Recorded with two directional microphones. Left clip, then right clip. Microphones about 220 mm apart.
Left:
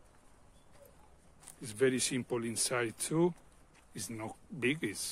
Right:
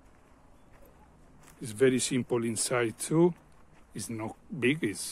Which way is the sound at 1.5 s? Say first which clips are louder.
Right 5 dB; 20° right (ahead or behind).